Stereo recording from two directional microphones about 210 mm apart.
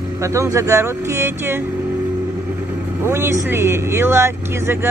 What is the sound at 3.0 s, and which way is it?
Speech, 10° right (ahead or behind).